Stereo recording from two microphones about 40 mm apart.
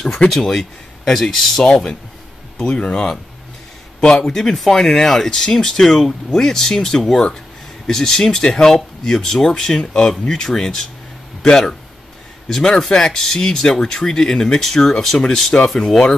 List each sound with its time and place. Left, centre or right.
0.2 s speech: left
0.6 s speech: centre
1.7 s speech: left
4.2 s speech: centre
12.4 s speech: centre